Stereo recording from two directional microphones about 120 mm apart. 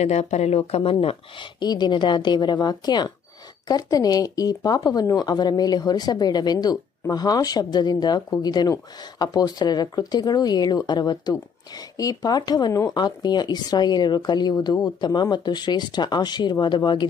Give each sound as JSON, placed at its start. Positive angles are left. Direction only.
{"t": 0.0, "sound": "speech", "side_deg": 65}
{"t": 1.0, "sound": "speech", "side_deg": 45}